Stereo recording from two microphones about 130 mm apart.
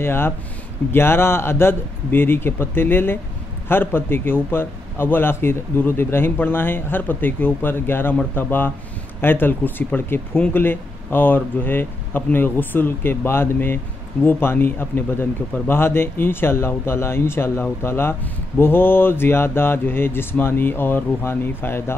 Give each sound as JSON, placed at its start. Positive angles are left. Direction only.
{"t": 0.0, "sound": "a man's voice", "side_deg": 15}